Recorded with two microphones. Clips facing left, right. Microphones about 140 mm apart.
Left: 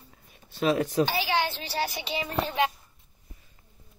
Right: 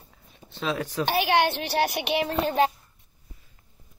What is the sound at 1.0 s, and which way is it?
A child's voice, 60° right (ahead or behind).